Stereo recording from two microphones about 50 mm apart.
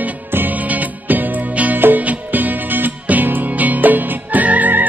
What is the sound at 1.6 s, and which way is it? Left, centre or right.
Music, right.